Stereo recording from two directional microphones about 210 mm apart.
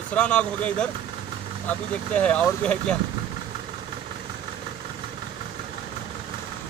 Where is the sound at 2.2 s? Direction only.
5° left (ahead or behind).